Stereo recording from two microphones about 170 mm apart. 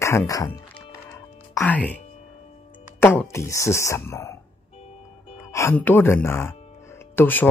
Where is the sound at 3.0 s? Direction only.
15° left (ahead or behind).